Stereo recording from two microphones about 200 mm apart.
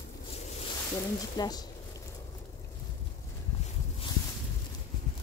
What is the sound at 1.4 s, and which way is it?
Speech, 20° left (ahead or behind).